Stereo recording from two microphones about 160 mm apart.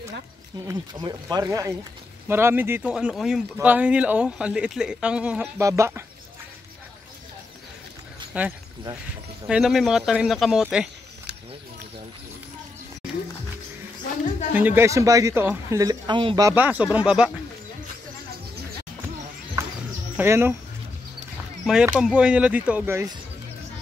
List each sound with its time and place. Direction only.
0.7 s speech: 25° right (ahead or behind); by 5.5 s 5° right (ahead or behind)
5.6 s speech: 20° right (ahead or behind)
8.3 s speech: 10° right (ahead or behind)
14.5 s speech: 10° right (ahead or behind); by 16.4 s 30° right (ahead or behind)
16.4 s speech: 10° right (ahead or behind)
20.2 s speech: 15° right (ahead or behind)
22.0 s speech: 5° right (ahead or behind)